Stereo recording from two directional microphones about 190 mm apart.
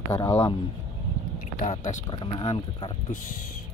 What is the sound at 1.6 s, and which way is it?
Speech, 40° left (ahead or behind).